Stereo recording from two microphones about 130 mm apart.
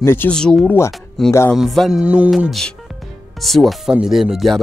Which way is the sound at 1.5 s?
Centre (ahead or behind).